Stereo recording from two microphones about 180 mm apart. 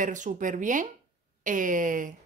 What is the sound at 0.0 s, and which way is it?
Speech, 45° right (ahead or behind).